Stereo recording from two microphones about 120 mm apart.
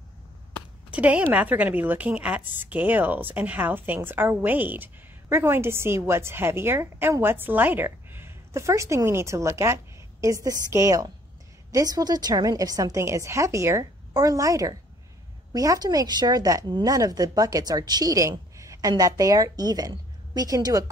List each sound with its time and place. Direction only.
0.9 s a woman's voice: 10° right (ahead or behind); by 20.8 s 30° right (ahead or behind)